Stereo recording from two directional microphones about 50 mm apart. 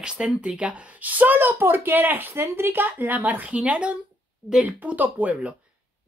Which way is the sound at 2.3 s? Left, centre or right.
Right.